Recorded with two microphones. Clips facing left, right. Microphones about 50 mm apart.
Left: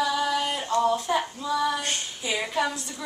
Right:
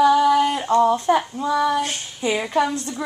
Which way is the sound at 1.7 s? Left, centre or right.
Centre.